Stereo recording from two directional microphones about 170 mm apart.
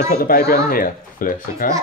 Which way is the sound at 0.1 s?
60° left (ahead or behind).